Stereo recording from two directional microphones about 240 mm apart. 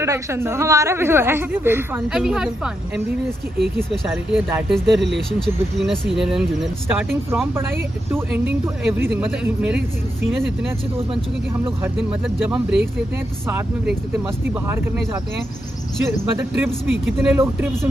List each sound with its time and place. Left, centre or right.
0.0 s speech: centre
3.9 s speech: centre
4.9 s speech: right
5.8 s speech: centre
11.8 s speech: centre
14.5 s speech: centre
16.1 s speech: centre